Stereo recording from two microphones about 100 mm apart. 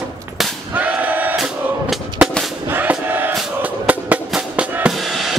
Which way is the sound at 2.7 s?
20° right (ahead or behind).